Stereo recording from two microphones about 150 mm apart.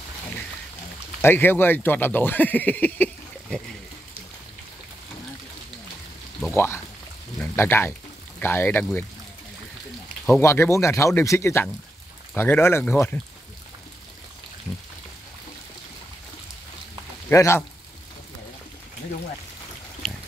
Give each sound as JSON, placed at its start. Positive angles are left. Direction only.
{"t": 1.2, "sound": "speech", "side_deg": 15}
{"t": 6.5, "sound": "speech", "side_deg": 15}
{"t": 10.4, "sound": "speech", "side_deg": 15}
{"t": 17.3, "sound": "speech", "side_deg": 15}
{"t": 20.0, "sound": "pig", "side_deg": 0}